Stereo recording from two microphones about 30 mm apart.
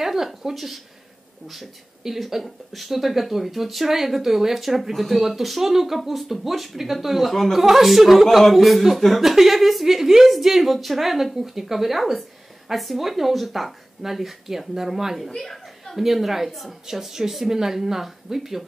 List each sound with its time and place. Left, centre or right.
0.0 s a woman's voice: centre
15.1 s a woman's voice: centre